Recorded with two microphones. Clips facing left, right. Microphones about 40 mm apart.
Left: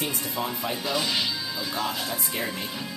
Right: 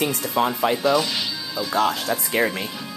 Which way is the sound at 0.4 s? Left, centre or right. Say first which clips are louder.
Right 11 dB; right.